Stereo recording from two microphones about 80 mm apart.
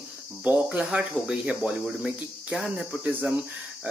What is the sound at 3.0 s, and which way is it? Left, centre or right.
Speech, right.